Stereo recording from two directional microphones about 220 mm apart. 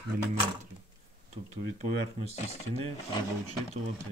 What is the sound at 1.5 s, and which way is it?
Speech, 30° right (ahead or behind).